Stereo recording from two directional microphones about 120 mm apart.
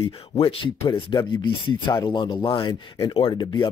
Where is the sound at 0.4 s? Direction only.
50° left (ahead or behind).